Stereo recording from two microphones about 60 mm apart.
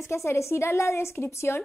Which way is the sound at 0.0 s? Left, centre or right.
Left.